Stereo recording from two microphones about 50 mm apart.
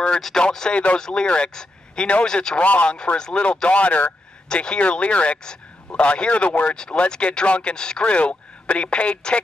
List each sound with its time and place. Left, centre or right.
0.4 s a man's voice: centre
2.6 s speech: left
3.2 s speech: centre
3.6 s speech: left